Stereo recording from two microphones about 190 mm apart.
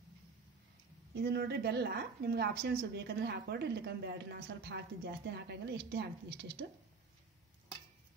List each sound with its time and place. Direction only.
1.2 s a woman's voice: 55° right (ahead or behind)